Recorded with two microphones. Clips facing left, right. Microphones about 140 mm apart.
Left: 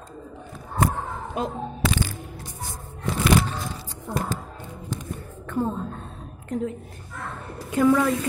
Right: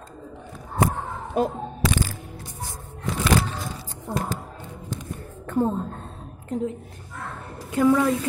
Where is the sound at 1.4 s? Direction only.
40° right (ahead or behind).